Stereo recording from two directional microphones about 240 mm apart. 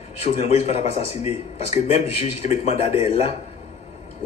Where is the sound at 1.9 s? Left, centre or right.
Left.